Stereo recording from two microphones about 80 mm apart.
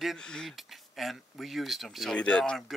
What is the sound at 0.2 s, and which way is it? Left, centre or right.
Speech, centre.